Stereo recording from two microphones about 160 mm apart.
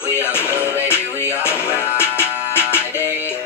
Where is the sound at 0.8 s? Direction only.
15° left (ahead or behind).